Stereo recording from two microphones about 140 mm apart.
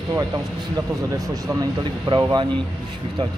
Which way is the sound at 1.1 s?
30° right (ahead or behind).